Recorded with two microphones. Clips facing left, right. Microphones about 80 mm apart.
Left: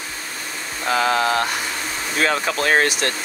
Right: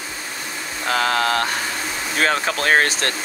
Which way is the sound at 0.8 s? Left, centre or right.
Left.